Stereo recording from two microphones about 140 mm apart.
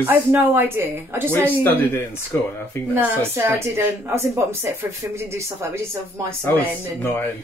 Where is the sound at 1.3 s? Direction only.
15° left (ahead or behind).